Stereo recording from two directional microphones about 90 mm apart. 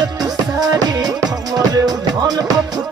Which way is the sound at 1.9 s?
50° right (ahead or behind).